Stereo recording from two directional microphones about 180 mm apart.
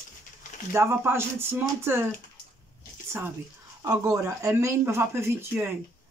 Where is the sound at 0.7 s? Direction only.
15° right (ahead or behind).